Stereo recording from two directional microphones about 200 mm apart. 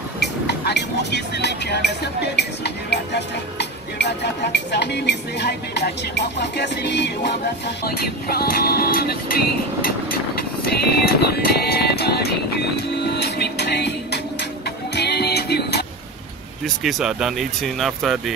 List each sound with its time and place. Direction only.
0.2 s speech: 55° left (ahead or behind)
10.7 s music: 50° left (ahead or behind)
16.6 s speech: centre (ahead or behind)